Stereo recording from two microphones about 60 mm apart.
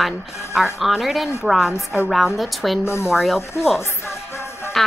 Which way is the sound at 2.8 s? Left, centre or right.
Left.